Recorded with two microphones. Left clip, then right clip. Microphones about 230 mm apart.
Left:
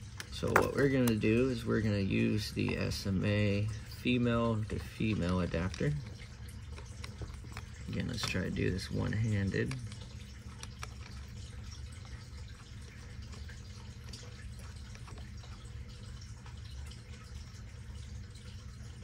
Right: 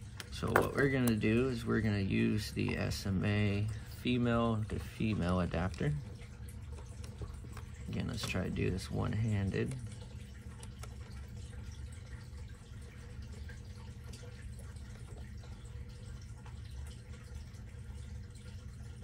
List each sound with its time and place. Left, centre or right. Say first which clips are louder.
0.2 s a sound: left 2 dB; centre
0.7 s speech: left 2 dB; centre
7.9 s speech: left 2 dB; centre